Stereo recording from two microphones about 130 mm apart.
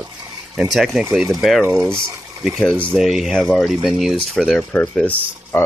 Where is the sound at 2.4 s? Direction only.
Centre (ahead or behind).